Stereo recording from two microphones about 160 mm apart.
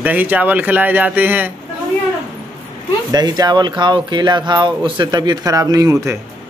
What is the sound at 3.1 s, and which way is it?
Speech, 25° right (ahead or behind).